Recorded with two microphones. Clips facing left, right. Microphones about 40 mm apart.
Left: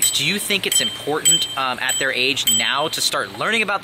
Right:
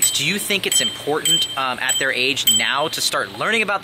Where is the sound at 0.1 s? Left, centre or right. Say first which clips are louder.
Even; centre.